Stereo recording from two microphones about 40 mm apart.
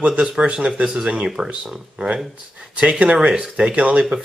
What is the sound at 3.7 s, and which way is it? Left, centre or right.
Speech, right.